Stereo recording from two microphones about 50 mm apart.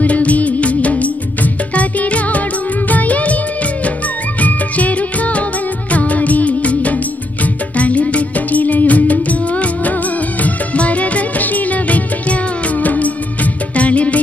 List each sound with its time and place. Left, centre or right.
0.0 s music: left
2.9 s music of bollywood: left
4.4 s music: left